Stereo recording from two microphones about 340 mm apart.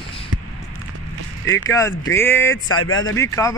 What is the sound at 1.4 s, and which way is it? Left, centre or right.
Speech, centre.